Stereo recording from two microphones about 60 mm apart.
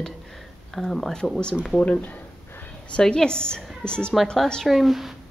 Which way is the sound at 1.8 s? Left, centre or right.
Left.